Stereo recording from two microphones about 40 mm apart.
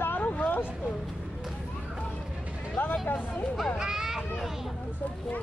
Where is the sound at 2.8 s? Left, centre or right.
Left.